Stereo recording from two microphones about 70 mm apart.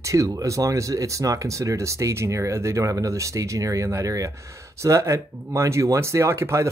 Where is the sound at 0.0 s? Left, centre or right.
Right.